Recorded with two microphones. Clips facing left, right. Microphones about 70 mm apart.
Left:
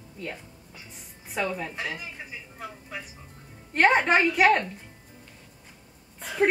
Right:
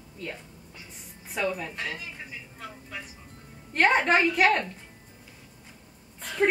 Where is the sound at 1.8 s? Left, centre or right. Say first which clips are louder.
Left 1 dB; centre.